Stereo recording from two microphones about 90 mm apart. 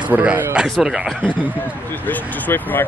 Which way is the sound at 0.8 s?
5° right (ahead or behind).